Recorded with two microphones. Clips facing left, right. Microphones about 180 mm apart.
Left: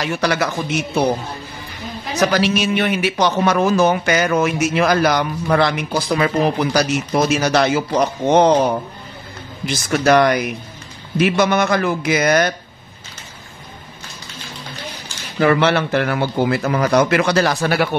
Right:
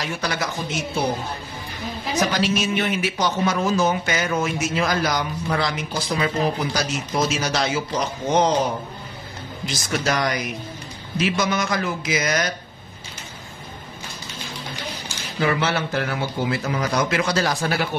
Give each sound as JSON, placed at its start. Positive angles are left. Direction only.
{"t": 0.0, "sound": "speech", "side_deg": 70}
{"t": 2.1, "sound": "a man's voice", "side_deg": 70}
{"t": 9.8, "sound": "a man's voice", "side_deg": 60}
{"t": 15.3, "sound": "a man's voice", "side_deg": 60}